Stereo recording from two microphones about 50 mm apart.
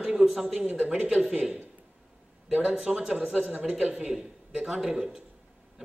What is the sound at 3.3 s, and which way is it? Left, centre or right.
Speech, right.